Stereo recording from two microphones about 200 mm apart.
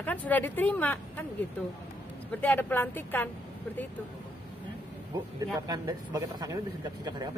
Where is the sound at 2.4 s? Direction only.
10° left (ahead or behind).